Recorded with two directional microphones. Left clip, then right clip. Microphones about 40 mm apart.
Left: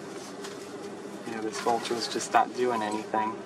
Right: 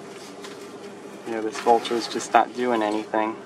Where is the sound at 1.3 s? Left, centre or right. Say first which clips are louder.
Right 8 dB; right.